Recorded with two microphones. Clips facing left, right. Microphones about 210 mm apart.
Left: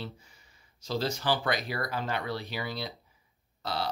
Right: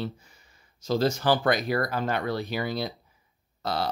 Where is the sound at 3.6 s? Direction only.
45° right (ahead or behind).